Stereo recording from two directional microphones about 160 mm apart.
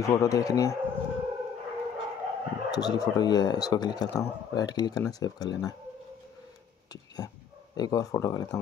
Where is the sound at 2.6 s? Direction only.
25° left (ahead or behind).